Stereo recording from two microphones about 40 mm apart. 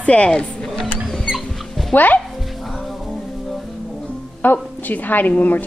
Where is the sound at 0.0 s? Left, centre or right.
Left.